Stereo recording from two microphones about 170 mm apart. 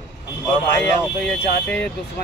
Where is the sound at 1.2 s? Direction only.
5° left (ahead or behind).